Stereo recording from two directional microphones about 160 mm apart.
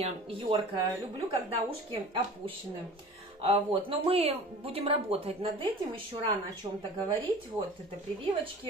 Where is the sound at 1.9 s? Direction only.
35° right (ahead or behind).